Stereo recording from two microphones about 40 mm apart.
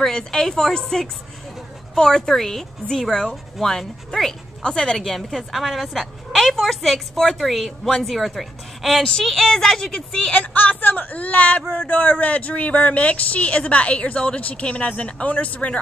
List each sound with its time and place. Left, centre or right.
0.0 s speech: centre
4.9 s a woman's voice: centre
10.3 s speech: left